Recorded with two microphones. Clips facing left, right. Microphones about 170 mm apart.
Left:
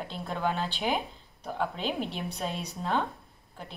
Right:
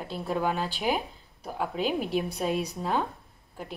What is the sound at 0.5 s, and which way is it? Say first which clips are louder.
Speech: right 2 dB; 40° right (ahead or behind).